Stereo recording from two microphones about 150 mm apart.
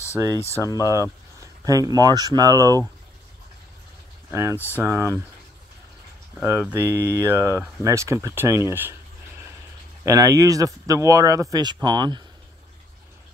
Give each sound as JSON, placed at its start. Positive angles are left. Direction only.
{"t": 0.2, "sound": "speech", "side_deg": -20}
{"t": 0.6, "sound": "speech", "side_deg": 25}
{"t": 1.4, "sound": "speech", "side_deg": -25}
{"t": 4.3, "sound": "speech", "side_deg": -20}
{"t": 4.6, "sound": "speech", "side_deg": 15}
{"t": 4.8, "sound": "speech", "side_deg": -20}
{"t": 6.6, "sound": "speech", "side_deg": -15}
{"t": 10.0, "sound": "speech", "side_deg": -25}